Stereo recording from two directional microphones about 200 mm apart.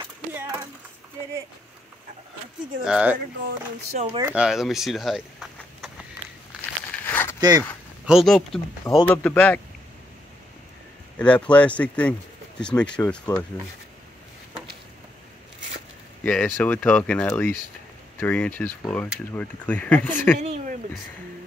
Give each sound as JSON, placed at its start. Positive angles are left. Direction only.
{"t": 0.3, "sound": "a sound", "side_deg": -10}
{"t": 2.8, "sound": "speech", "side_deg": -5}
{"t": 3.9, "sound": "speech", "side_deg": -30}
{"t": 4.2, "sound": "speech", "side_deg": -5}
{"t": 6.6, "sound": "a sound", "side_deg": 10}
{"t": 7.3, "sound": "speech", "side_deg": -20}
{"t": 8.0, "sound": "speech", "side_deg": 0}
{"t": 8.8, "sound": "speech", "side_deg": 15}
{"t": 11.1, "sound": "speech", "side_deg": 5}
{"t": 16.3, "sound": "speech", "side_deg": 5}
{"t": 20.3, "sound": "speech", "side_deg": -35}